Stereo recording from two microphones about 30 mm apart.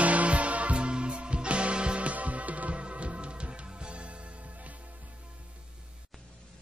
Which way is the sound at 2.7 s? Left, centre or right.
Right.